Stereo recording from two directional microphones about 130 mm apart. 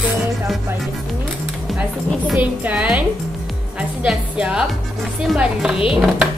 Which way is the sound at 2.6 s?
10° right (ahead or behind).